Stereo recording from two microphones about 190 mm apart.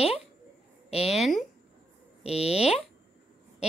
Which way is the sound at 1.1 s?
Centre (ahead or behind).